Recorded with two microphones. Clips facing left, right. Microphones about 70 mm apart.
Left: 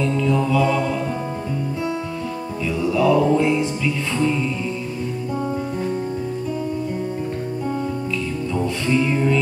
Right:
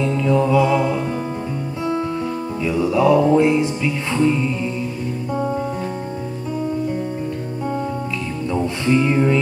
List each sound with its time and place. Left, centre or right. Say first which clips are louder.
0.0 s mantra: right 2 dB; centre
2.6 s music: right 2 dB; right
8.8 s music: right 3 dB; right